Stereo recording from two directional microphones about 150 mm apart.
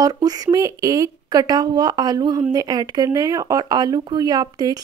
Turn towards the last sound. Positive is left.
turn(degrees=-25)  # may be behind; listen again after turning